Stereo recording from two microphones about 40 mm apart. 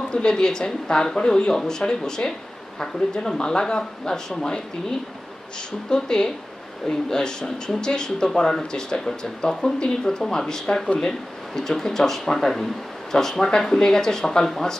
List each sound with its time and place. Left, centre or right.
0.1 s speech: left
5.9 s speech: centre